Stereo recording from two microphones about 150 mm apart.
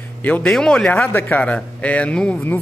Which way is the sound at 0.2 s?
10° left (ahead or behind).